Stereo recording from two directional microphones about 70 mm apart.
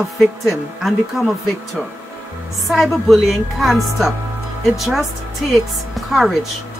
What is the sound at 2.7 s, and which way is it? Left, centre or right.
A woman's voice, centre.